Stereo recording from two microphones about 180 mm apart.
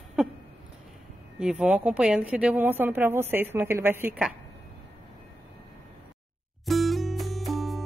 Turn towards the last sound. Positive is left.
turn(degrees=0)  # may be behind; listen again after turning